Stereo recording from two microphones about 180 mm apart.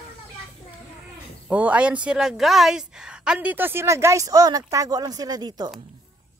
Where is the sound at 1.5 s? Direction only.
10° right (ahead or behind).